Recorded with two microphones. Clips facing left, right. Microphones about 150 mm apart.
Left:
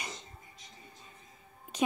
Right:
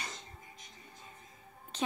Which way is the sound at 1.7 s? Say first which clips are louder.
Left 4 dB; 10° left (ahead or behind).